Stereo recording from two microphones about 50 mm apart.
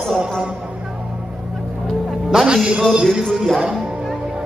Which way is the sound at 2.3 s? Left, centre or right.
Centre.